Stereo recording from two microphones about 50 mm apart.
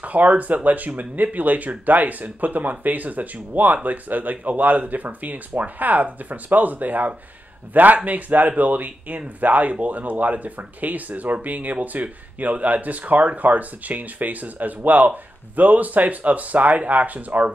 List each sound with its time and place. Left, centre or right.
0.0 s speech: right